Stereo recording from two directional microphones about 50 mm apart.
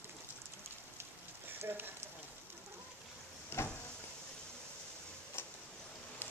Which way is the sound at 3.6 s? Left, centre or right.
Left.